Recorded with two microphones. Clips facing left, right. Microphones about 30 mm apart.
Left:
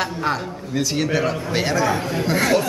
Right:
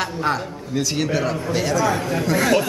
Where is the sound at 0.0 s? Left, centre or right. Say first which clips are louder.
Even; centre.